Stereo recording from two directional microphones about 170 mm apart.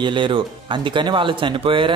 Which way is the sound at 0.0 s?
30° right (ahead or behind).